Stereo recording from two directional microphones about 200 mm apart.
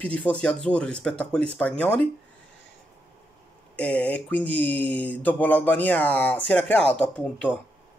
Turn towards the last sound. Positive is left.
turn(degrees=5)  # may be behind; listen again after turning